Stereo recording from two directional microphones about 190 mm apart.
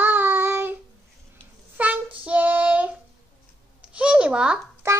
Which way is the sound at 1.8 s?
10° right (ahead or behind).